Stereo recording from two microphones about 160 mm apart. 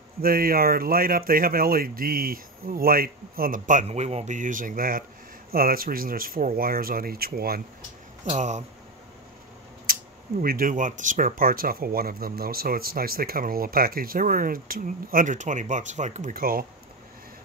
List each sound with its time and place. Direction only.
0.2 s speech: 70° right (ahead or behind)
8.3 s speech: 45° right (ahead or behind)
9.9 s a sound: 65° right (ahead or behind)
10.4 s speech: 60° right (ahead or behind)